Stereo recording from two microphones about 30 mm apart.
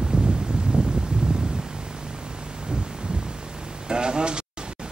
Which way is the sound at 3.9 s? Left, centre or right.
Right.